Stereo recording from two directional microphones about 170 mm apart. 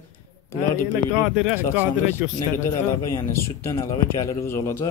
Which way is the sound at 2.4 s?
15° left (ahead or behind).